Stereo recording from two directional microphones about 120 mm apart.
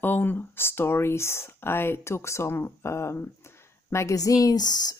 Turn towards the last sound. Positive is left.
turn(degrees=35)  # may be behind; listen again after turning